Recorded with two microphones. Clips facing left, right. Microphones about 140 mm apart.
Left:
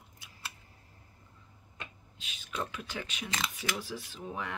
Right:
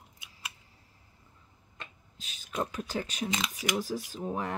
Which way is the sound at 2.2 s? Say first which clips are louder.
Right 4 dB; 40° right (ahead or behind).